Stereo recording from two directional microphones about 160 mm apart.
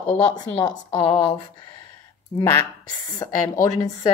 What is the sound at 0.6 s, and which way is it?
Speech, 35° left (ahead or behind).